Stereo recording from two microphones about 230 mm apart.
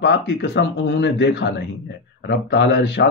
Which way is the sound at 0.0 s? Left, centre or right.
Left.